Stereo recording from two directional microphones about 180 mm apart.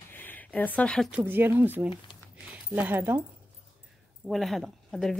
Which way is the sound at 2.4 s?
10° right (ahead or behind).